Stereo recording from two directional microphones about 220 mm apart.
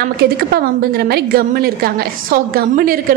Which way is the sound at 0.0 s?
45° right (ahead or behind).